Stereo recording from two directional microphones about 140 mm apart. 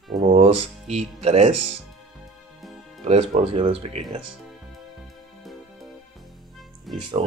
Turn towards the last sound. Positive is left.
turn(degrees=0)  # may be behind; listen again after turning